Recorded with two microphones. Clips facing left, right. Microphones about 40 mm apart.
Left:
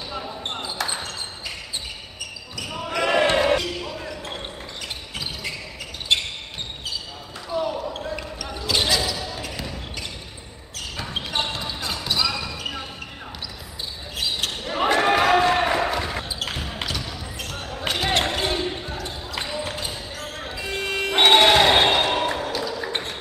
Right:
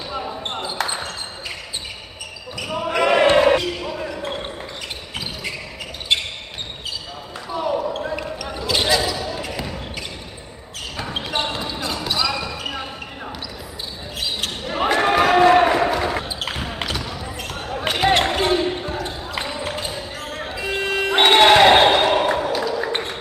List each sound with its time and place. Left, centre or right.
0.1 s basketball bounce: centre
2.7 s basketball bounce: right
3.3 s basketball bounce: centre
6.1 s basketball bounce: centre
7.4 s basketball bounce: centre
11.0 s basketball bounce: centre
14.4 s basketball bounce: centre
17.7 s music: right
18.2 s basketball bounce: centre
21.2 s crowd: right; by 22.5 s centre
22.8 s a sound: right